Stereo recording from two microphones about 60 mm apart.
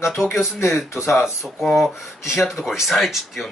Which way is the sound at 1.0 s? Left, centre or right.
Centre.